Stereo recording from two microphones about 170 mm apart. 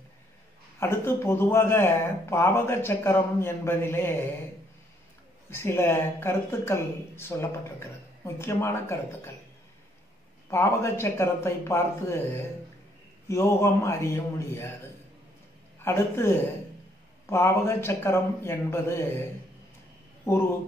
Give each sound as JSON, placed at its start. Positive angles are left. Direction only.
{"t": 0.7, "sound": "speech", "side_deg": 15}
{"t": 5.5, "sound": "speech", "side_deg": 15}
{"t": 10.5, "sound": "speech", "side_deg": 15}
{"t": 15.8, "sound": "speech", "side_deg": 15}
{"t": 20.3, "sound": "speech", "side_deg": 20}